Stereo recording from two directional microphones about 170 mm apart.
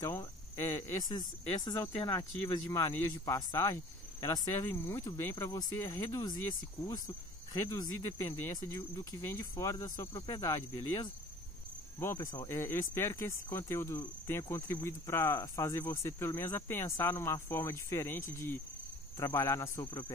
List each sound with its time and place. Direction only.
0.0 s speech: 15° left (ahead or behind)